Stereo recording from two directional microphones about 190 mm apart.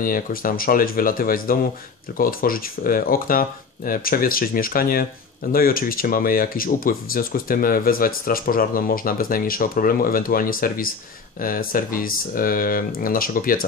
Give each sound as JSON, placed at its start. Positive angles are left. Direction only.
{"t": 0.0, "sound": "speech", "side_deg": 50}